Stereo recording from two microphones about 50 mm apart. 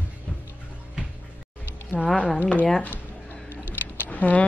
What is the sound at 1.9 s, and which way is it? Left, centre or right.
Speech, left.